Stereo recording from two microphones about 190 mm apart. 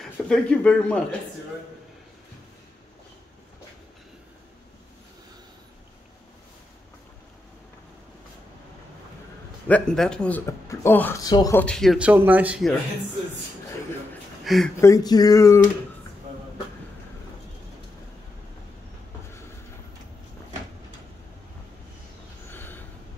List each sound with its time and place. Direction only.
0.0 s a man's voice: 5° left (ahead or behind)
9.7 s speech: 5° left (ahead or behind)
11.6 s a man's voice: 5° left (ahead or behind)
14.4 s a sound: centre (ahead or behind)
14.8 s speech: 15° left (ahead or behind)
22.5 s train: 10° left (ahead or behind)